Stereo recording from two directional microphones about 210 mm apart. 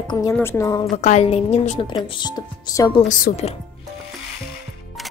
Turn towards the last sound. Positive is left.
turn(degrees=35)  # may be behind; listen again after turning